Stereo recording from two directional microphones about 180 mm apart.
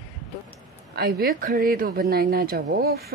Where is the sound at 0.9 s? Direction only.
60° right (ahead or behind).